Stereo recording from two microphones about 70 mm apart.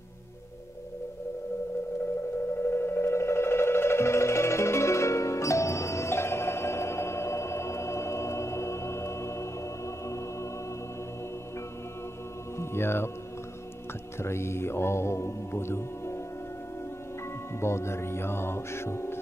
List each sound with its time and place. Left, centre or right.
2.5 s music: left
12.5 s mantra: left
14.2 s mantra: left
17.6 s music: left